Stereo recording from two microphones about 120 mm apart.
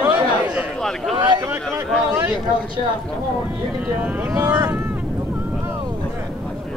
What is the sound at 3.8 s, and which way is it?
Speech, 15° right (ahead or behind).